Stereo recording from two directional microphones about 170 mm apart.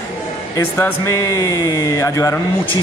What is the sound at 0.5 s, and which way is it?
A man's voice, 20° left (ahead or behind).